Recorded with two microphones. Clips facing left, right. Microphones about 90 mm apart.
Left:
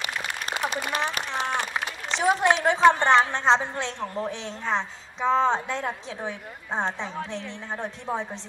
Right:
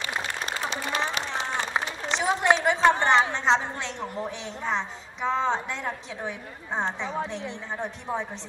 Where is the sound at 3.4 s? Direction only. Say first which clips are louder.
Left 2 dB; 20° left (ahead or behind).